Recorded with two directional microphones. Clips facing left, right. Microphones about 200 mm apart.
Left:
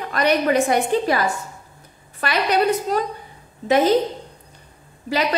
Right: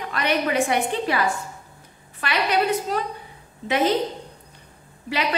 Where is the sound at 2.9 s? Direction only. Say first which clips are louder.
Left 4 dB; 45° left (ahead or behind).